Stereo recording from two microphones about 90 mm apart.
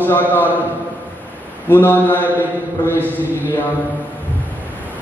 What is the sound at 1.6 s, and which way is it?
Speech, 20° left (ahead or behind).